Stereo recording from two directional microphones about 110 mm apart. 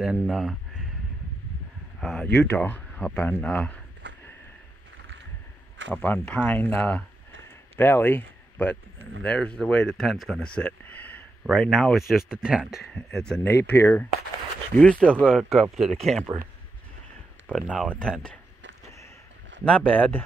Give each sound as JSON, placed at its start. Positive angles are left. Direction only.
{"t": 0.0, "sound": "speech", "side_deg": -5}
{"t": 2.0, "sound": "speech", "side_deg": 5}
{"t": 2.6, "sound": "speech", "side_deg": 15}
{"t": 5.9, "sound": "speech", "side_deg": 10}
{"t": 11.4, "sound": "speech", "side_deg": 0}
{"t": 12.9, "sound": "speech", "side_deg": 5}
{"t": 13.4, "sound": "speech", "side_deg": 20}
{"t": 14.8, "sound": "speech", "side_deg": 10}
{"t": 17.8, "sound": "speech", "side_deg": 10}
{"t": 19.6, "sound": "speech", "side_deg": 10}